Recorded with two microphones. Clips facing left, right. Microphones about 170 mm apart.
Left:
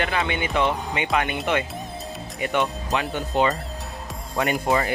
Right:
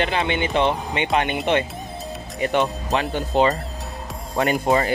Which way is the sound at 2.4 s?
30° right (ahead or behind).